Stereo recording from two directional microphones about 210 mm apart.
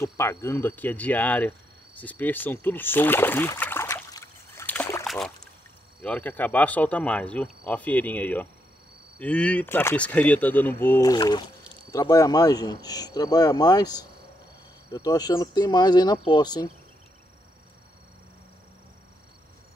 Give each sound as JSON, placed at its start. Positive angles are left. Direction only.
{"t": 0.0, "sound": "speech", "side_deg": 15}
{"t": 2.0, "sound": "a sound", "side_deg": 10}
{"t": 6.0, "sound": "speech", "side_deg": 5}